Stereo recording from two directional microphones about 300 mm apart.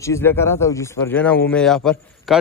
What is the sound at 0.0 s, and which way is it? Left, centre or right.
Speech, centre.